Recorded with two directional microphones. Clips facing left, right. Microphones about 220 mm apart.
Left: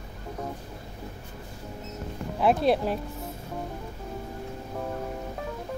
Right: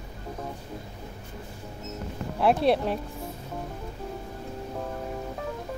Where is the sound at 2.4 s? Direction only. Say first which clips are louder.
Even; centre (ahead or behind).